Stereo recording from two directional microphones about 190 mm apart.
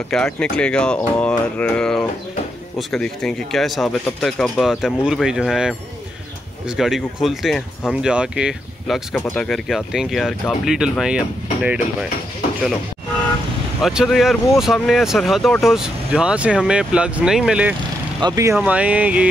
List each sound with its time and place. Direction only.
0.1 s speech: 5° left (ahead or behind)
6.8 s speech: centre (ahead or behind)
13.8 s speech: centre (ahead or behind)
18.2 s speech: 15° right (ahead or behind)